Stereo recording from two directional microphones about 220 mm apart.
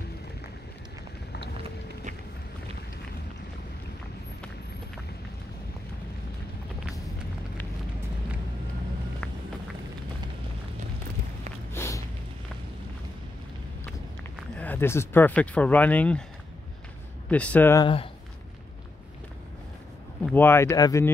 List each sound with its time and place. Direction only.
11.7 s a sound: 10° left (ahead or behind)
14.6 s speech: 10° left (ahead or behind)
17.3 s speech: 5° left (ahead or behind)
17.8 s speech: 25° left (ahead or behind)
20.2 s speech: 10° left (ahead or behind)